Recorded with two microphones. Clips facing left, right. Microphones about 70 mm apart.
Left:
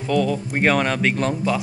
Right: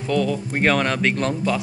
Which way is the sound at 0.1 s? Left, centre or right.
Centre.